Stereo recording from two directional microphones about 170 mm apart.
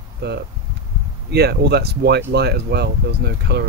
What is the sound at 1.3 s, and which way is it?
Speech, 75° right (ahead or behind).